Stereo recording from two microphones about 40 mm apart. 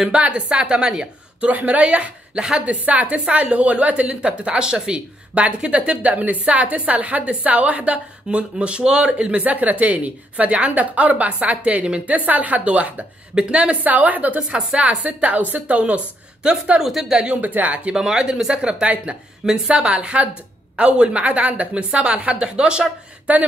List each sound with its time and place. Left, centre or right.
0.1 s a woman's voice: right
1.5 s speech: right
2.3 s a woman's voice: centre
2.6 s speech: right
5.4 s speech: right
12.3 s speech: right
13.3 s a woman's voice: right
13.8 s a woman's voice: right
14.5 s a woman's voice: right
16.8 s a woman's voice: centre
17.4 s speech: right
17.9 s a woman's voice: centre